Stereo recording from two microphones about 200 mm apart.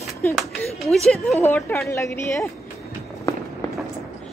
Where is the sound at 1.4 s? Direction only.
10° left (ahead or behind).